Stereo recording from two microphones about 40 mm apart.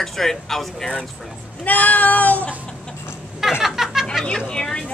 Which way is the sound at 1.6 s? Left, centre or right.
Left.